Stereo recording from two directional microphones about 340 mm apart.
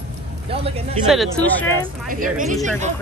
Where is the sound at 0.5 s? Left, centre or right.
Centre.